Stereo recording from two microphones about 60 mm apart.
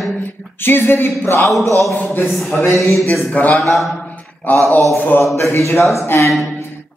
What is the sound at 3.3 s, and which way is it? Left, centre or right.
A man's voice, left.